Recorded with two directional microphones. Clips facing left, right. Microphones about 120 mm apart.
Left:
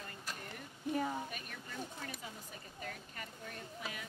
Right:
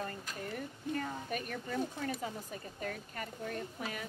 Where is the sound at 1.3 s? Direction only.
50° right (ahead or behind).